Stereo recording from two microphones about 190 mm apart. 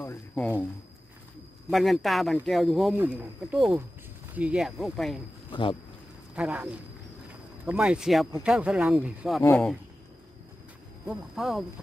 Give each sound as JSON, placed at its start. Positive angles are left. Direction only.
{"t": 1.7, "sound": "speech", "side_deg": 0}
{"t": 5.5, "sound": "speech", "side_deg": 25}
{"t": 6.3, "sound": "speech", "side_deg": -5}
{"t": 9.4, "sound": "speech", "side_deg": 15}
{"t": 11.1, "sound": "speech", "side_deg": 0}